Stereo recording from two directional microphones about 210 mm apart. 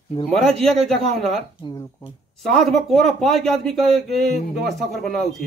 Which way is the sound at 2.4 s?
Centre (ahead or behind).